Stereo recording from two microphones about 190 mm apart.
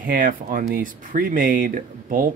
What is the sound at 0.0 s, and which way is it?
Speech, 50° right (ahead or behind).